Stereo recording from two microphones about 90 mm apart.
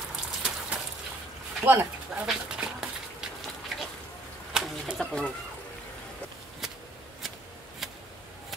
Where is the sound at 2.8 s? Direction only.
5° right (ahead or behind).